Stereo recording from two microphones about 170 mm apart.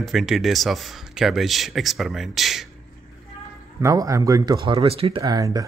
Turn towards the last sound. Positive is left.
turn(degrees=-20)  # may be behind; listen again after turning